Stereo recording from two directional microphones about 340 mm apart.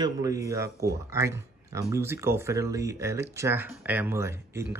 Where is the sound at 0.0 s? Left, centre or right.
Centre.